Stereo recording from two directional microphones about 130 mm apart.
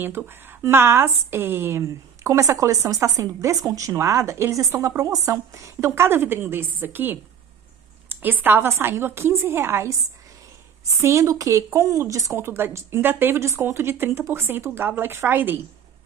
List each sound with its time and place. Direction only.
0.5 s a woman's voice: 15° right (ahead or behind)
11.0 s a woman's voice: 20° right (ahead or behind)